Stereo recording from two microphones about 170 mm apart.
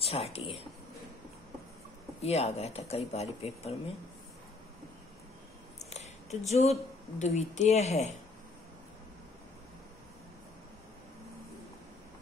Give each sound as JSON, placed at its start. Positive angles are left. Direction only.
{"t": 0.0, "sound": "speech", "side_deg": 35}
{"t": 2.2, "sound": "speech", "side_deg": 35}
{"t": 5.9, "sound": "speech", "side_deg": 40}